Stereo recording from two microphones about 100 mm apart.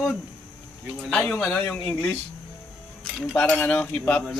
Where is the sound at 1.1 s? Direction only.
10° left (ahead or behind).